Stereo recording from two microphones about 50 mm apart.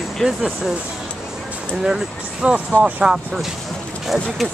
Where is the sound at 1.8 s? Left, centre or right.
Centre.